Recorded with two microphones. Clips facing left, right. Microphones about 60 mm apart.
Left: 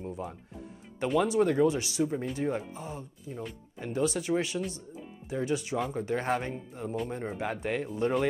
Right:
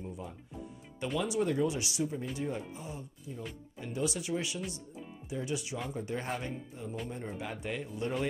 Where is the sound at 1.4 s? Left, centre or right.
Left.